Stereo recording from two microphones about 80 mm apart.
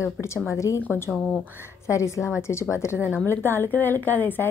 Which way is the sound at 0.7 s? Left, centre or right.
Left.